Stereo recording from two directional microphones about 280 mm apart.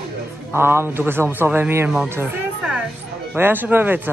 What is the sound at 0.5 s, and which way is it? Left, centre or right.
A man's voice, centre.